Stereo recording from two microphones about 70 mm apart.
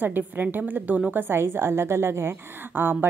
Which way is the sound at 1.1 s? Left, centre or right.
Right.